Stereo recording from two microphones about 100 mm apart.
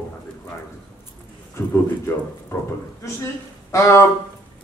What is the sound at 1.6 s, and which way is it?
Speech, 30° left (ahead or behind).